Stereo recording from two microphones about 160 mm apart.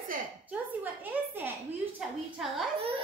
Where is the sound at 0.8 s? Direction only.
10° right (ahead or behind).